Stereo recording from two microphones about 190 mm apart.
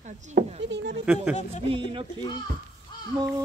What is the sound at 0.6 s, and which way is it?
Speech, 65° right (ahead or behind).